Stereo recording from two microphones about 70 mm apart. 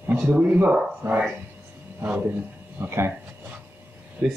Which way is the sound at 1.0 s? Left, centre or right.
Right.